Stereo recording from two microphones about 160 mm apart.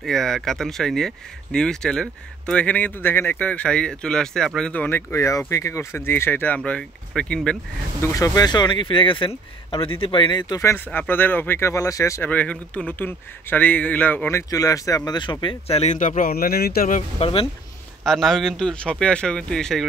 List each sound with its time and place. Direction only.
0.0 s speech: centre (ahead or behind)
8.0 s speech: 20° left (ahead or behind)
15.4 s speech: 40° left (ahead or behind); by 17.0 s 65° left (ahead or behind)
17.2 s speech: 35° left (ahead or behind)
18.0 s speech: centre (ahead or behind)